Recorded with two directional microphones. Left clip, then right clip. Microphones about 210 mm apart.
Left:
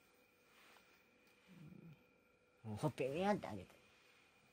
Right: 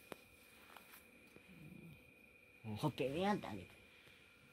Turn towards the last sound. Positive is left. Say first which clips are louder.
# even
turn(degrees=55)  # may be behind; listen again after turning